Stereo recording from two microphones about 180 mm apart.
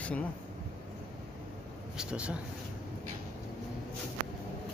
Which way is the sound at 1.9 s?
5° right (ahead or behind).